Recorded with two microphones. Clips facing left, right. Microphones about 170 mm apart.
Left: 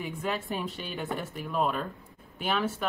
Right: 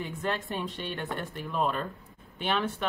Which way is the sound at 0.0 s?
5° left (ahead or behind).